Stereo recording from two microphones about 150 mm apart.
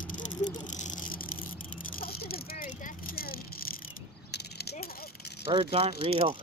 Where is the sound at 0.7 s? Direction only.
55° left (ahead or behind).